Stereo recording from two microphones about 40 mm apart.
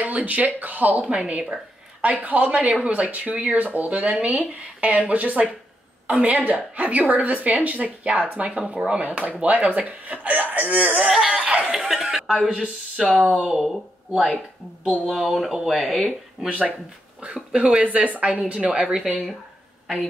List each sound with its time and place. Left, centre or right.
0.0 s speech: right
1.0 s speech: right
11.1 s speech: centre
16.4 s speech: right
17.8 s speech: right
18.8 s speech: centre